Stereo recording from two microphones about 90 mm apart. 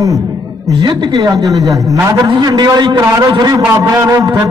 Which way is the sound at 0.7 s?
60° right (ahead or behind).